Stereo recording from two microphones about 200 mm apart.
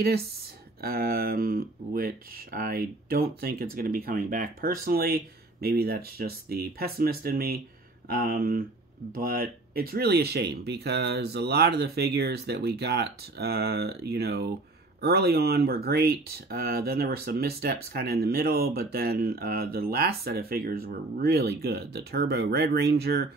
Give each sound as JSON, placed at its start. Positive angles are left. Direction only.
{"t": 0.7, "sound": "speech", "side_deg": -50}